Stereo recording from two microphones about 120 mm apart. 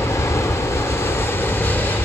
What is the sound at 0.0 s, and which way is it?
Vehicle, 25° left (ahead or behind).